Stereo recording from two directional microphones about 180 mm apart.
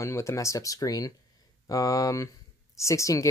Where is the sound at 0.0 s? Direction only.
15° left (ahead or behind).